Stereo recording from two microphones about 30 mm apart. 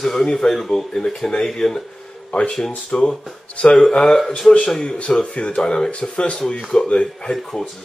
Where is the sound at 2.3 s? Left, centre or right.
Left.